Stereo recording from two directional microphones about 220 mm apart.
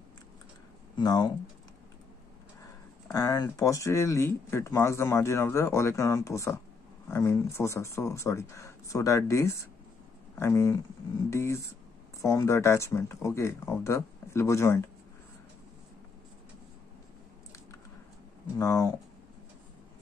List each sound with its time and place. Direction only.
0.9 s speech: 20° left (ahead or behind)
2.6 s speech: 15° left (ahead or behind)
18.6 s speech: 15° left (ahead or behind)